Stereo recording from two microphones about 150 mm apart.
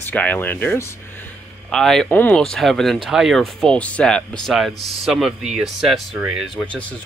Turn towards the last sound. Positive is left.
turn(degrees=0)  # may be behind; listen again after turning